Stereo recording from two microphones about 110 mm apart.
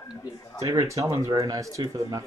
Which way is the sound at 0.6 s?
30° right (ahead or behind).